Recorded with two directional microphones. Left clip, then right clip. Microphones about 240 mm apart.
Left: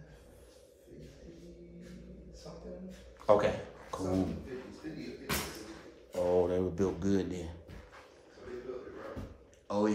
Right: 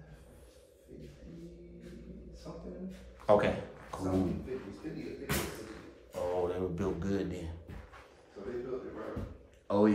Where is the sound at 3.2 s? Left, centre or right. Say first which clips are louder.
Even; centre.